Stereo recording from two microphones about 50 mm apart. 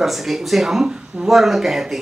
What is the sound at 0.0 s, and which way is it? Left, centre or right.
Speech, centre.